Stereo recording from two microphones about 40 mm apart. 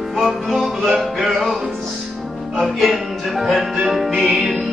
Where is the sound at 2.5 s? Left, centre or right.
Centre.